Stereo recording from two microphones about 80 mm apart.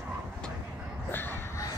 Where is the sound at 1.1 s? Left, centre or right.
Left.